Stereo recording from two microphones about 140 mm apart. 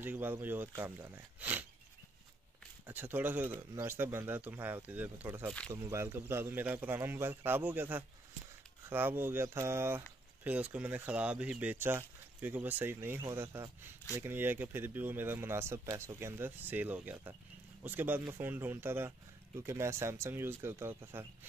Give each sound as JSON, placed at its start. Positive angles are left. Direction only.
{"t": 0.0, "sound": "speech", "side_deg": -15}
{"t": 2.9, "sound": "speech", "side_deg": -15}